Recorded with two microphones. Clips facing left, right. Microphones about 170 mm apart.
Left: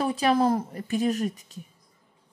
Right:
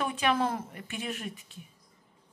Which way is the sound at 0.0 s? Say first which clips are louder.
Left 6 dB; 35° left (ahead or behind).